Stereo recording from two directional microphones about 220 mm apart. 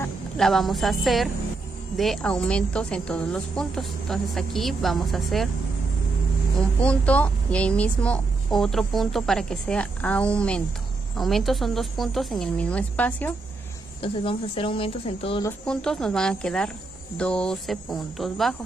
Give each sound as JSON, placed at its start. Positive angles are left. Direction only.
{"t": 0.0, "sound": "a woman's voice", "side_deg": 0}
{"t": 6.8, "sound": "a woman's voice", "side_deg": 5}
{"t": 14.0, "sound": "speech", "side_deg": 25}
{"t": 15.4, "sound": "a woman's voice", "side_deg": 5}